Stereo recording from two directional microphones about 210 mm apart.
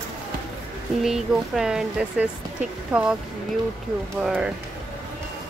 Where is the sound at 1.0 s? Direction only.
Centre (ahead or behind).